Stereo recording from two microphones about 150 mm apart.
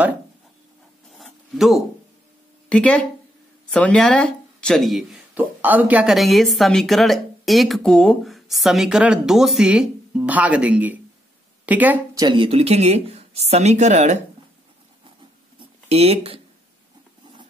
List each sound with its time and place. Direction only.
1.1 s zipper: centre (ahead or behind)
2.7 s a woman's voice: 5° left (ahead or behind)
5.3 s a woman's voice: 10° right (ahead or behind)
12.2 s speech: 30° right (ahead or behind); by 14.2 s 50° right (ahead or behind)
15.9 s speech: 40° right (ahead or behind)